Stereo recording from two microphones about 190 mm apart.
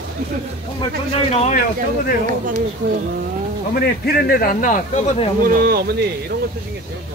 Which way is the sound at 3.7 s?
55° left (ahead or behind).